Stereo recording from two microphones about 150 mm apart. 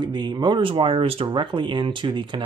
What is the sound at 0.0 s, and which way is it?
Speech, 30° right (ahead or behind).